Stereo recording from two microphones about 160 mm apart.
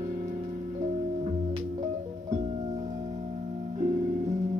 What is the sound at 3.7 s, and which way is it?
Music, 45° right (ahead or behind).